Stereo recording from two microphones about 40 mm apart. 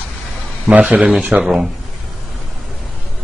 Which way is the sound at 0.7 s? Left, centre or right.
Right.